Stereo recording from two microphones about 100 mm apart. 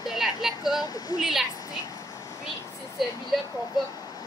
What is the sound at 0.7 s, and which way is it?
Speech, 40° left (ahead or behind).